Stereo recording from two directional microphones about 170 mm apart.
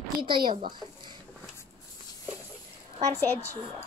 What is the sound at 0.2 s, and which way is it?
Speech, 25° right (ahead or behind).